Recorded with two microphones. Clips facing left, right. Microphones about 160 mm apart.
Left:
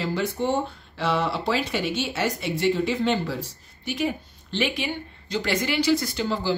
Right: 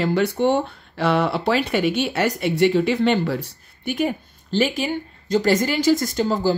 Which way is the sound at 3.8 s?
55° right (ahead or behind).